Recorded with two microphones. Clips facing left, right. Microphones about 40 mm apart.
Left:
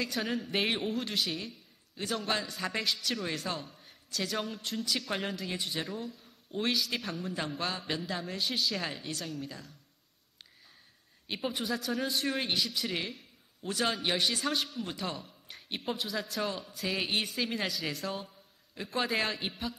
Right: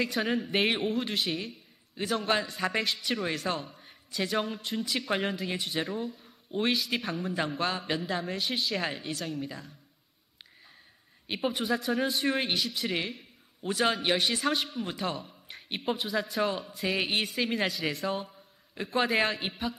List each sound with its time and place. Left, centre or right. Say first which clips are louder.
0.0 s a man's voice: right 4 dB; centre
11.2 s a man's voice: right 4 dB; centre